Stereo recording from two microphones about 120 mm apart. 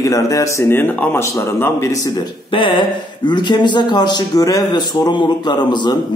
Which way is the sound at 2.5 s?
45° left (ahead or behind).